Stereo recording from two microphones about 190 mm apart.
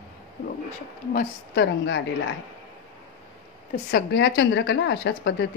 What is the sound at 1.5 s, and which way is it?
Speech, 65° left (ahead or behind).